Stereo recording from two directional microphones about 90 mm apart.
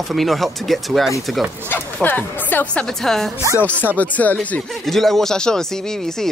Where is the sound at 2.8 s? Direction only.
5° left (ahead or behind).